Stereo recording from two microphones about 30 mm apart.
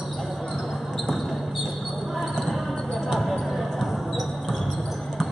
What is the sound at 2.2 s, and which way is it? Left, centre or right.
Basketball bounce, centre.